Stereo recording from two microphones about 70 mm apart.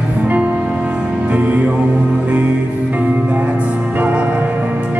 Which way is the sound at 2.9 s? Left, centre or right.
Right.